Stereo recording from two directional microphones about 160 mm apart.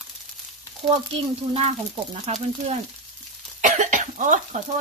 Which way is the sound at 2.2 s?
40° right (ahead or behind).